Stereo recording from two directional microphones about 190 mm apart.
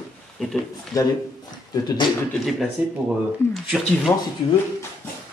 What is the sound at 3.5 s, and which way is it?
Speech, centre (ahead or behind).